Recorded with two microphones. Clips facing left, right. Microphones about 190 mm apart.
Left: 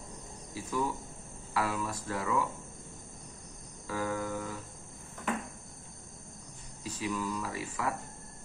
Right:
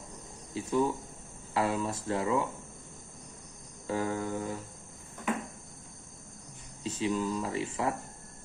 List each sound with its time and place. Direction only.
0.6 s speech: 25° right (ahead or behind)
3.8 s speech: 25° right (ahead or behind)
6.8 s speech: 25° right (ahead or behind)